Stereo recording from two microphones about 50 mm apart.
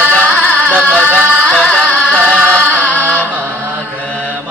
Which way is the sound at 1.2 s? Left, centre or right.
Right.